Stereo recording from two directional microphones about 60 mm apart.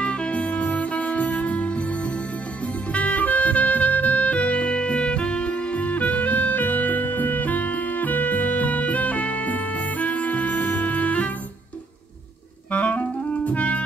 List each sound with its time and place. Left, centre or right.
0.0 s music: centre
2.9 s music: left
12.7 s clarinet: left